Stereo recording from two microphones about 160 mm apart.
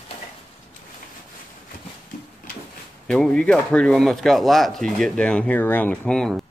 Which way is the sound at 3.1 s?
5° left (ahead or behind).